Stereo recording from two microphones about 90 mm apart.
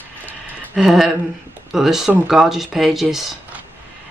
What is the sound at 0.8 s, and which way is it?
Speech, 5° right (ahead or behind).